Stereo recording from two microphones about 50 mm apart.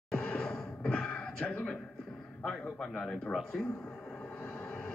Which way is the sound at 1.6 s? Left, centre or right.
Centre.